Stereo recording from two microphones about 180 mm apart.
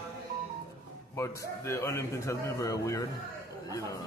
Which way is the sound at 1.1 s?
15° left (ahead or behind).